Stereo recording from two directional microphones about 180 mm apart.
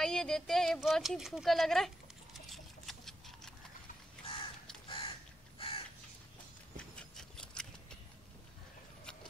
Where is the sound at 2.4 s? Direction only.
Centre (ahead or behind).